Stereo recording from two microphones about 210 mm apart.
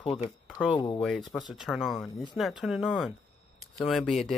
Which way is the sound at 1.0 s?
Centre (ahead or behind).